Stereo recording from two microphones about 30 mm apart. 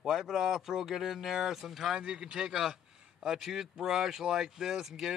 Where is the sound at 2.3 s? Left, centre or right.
Right.